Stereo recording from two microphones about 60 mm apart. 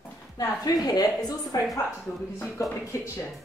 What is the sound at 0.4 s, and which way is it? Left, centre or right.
A woman's voice, left.